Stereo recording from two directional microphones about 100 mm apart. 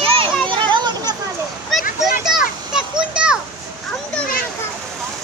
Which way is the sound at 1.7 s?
5° right (ahead or behind).